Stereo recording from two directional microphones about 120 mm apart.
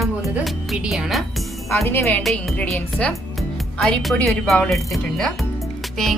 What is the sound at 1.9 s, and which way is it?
Speech, 20° left (ahead or behind).